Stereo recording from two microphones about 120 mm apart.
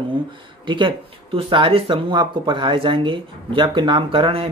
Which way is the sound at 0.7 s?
45° right (ahead or behind).